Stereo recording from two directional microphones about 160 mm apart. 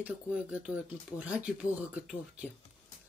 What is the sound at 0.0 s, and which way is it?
Speech, 5° right (ahead or behind).